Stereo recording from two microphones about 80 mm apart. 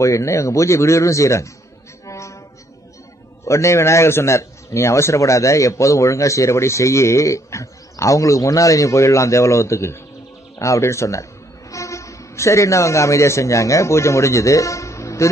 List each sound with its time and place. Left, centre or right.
0.0 s a man's voice: left
2.0 s a sound: left
3.4 s a man's voice: left